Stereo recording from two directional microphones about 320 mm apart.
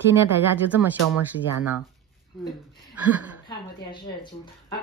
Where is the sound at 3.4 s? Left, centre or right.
Centre.